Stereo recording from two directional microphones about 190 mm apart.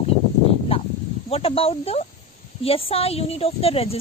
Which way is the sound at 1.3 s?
30° left (ahead or behind).